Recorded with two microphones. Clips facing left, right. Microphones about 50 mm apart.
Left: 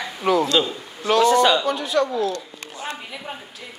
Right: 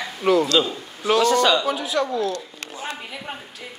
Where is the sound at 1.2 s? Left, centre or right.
Centre.